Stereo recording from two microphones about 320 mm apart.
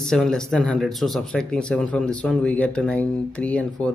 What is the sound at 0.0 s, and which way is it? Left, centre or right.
Speech, centre.